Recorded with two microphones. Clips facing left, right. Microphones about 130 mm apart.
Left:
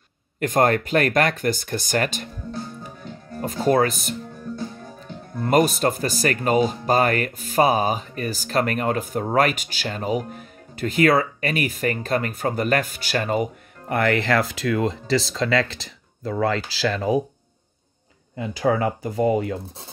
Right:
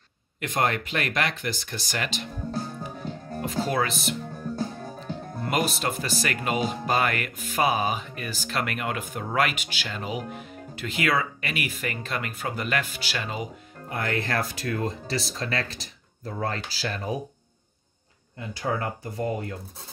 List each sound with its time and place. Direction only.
0.4 s speech: 45° left (ahead or behind)
3.3 s speech: 45° left (ahead or behind)
4.6 s music: 40° right (ahead or behind)
5.4 s speech: 40° left (ahead or behind)
13.9 s speech: 85° left
18.5 s speech: 90° left